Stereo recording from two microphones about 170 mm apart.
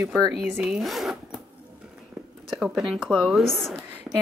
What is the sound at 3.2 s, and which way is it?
Speech, centre (ahead or behind).